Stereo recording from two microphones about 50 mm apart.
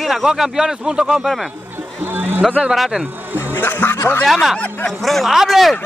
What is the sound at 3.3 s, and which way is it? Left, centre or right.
Music, left.